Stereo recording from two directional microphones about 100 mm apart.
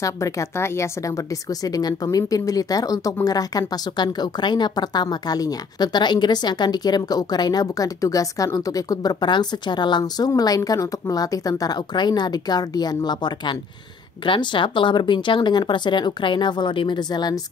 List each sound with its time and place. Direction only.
0.0 s a woman's voice: 30° left (ahead or behind)